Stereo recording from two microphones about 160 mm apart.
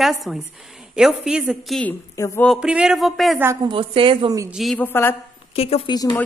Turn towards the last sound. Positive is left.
turn(degrees=25)  # may be behind; listen again after turning